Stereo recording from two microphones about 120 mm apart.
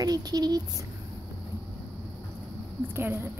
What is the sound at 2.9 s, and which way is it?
Speech, 20° right (ahead or behind).